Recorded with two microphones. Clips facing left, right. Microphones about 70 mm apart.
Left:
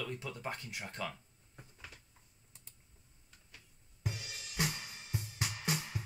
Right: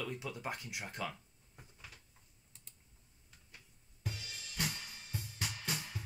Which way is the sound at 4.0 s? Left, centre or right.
Centre.